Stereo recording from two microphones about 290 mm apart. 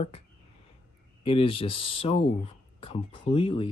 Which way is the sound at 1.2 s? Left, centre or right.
Centre.